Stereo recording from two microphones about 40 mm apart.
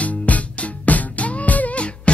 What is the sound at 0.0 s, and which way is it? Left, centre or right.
Music, left.